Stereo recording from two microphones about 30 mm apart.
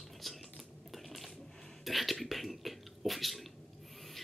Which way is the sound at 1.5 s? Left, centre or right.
Centre.